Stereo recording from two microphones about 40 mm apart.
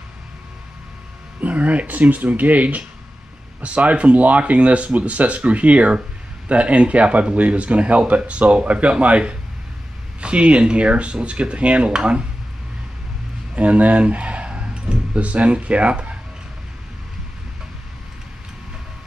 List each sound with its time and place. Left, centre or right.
1.4 s speech: right
13.6 s speech: right